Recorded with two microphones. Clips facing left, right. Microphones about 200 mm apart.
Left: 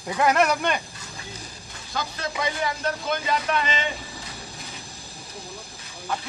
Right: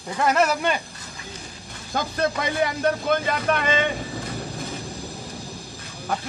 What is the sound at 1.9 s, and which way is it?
Speech, 50° right (ahead or behind).